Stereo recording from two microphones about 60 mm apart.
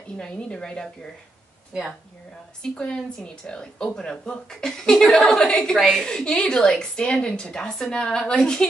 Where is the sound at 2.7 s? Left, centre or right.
Centre.